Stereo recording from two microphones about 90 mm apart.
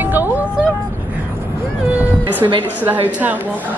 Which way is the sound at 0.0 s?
20° right (ahead or behind).